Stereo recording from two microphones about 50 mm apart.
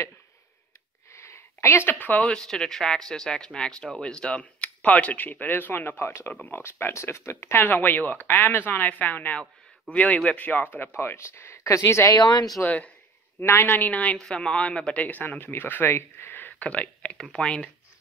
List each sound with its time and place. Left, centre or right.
1.1 s a sound: left
1.9 s speech: left
2.2 s speech: centre; by 7.6 s left
7.6 s speech: left
11.0 s speech: left
12.6 s speech: left
15.2 s speech: left
15.9 s speech: left
16.5 s speech: left